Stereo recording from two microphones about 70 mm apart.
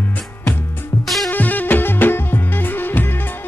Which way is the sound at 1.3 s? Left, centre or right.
Left.